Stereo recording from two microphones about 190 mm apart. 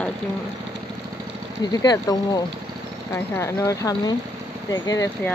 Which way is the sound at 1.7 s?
20° left (ahead or behind).